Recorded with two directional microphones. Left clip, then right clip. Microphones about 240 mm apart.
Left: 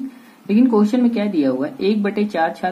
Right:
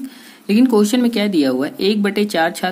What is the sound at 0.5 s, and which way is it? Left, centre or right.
Speech, right.